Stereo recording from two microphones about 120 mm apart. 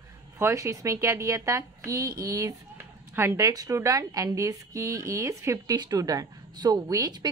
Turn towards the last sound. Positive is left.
turn(degrees=-30)  # may be behind; listen again after turning